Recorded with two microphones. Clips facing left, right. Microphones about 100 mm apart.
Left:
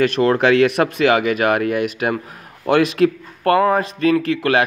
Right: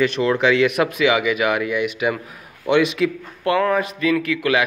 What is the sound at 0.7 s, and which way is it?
A man's voice, 35° left (ahead or behind).